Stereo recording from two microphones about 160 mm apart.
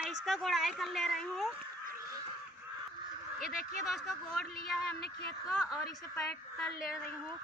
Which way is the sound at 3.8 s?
Centre (ahead or behind).